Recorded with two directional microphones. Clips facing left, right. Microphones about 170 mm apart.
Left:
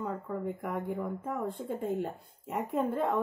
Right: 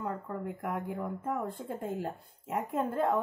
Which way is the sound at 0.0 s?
Centre (ahead or behind).